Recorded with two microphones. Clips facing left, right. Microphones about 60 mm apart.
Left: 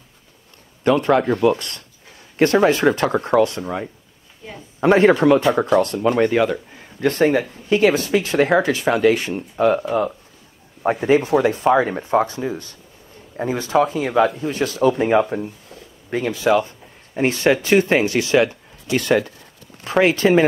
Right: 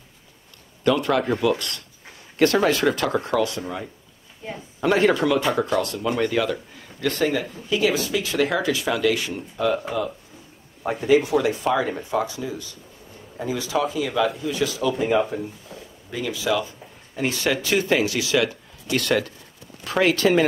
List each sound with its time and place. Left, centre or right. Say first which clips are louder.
0.8 s speech: left 4 dB; left
4.7 s speech: left 5 dB; left
16.1 s speech: left 7 dB; left
17.1 s speech: left 6 dB; left
18.9 s speech: left 4 dB; centre